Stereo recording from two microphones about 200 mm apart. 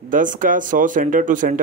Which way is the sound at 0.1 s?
40° right (ahead or behind).